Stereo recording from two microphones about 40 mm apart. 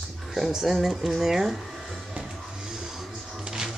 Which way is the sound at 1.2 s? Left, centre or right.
Centre.